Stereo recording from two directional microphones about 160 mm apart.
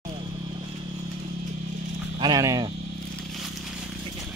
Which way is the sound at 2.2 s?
25° right (ahead or behind).